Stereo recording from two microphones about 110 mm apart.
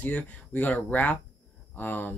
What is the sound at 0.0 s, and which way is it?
Speech, 15° left (ahead or behind).